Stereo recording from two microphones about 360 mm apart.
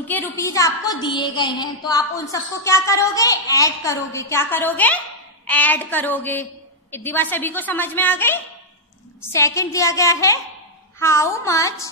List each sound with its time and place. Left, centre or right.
0.1 s a woman's voice: centre